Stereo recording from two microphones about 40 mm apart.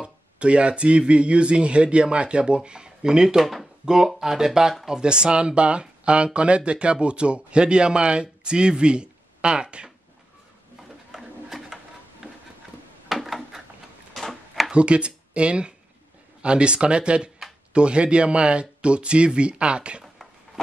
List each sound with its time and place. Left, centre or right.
0.0 s speech: right
11.4 s pigeon: centre
13.1 s a sound: centre
14.7 s speech: right